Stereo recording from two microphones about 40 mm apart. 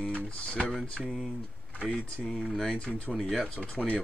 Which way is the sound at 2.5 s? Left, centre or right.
Centre.